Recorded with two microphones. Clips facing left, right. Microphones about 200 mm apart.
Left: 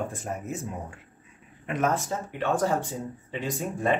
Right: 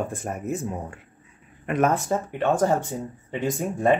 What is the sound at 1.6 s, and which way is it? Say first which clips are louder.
Speech: right 4 dB; 55° right (ahead or behind).